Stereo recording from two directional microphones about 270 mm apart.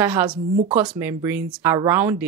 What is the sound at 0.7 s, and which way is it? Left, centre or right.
Speech, centre.